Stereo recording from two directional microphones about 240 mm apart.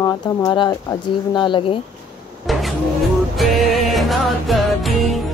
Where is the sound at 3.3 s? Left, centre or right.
Centre.